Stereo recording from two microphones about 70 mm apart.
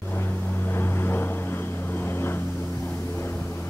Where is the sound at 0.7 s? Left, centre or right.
Left.